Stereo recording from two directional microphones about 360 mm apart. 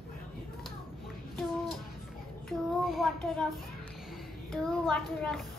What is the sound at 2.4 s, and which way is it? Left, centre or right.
A woman's voice, centre.